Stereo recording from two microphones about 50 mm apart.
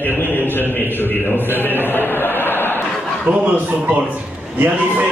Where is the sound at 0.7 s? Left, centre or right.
Left.